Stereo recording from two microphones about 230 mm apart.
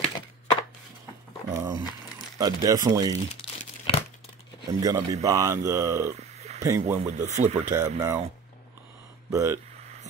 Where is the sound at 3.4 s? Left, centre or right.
Centre.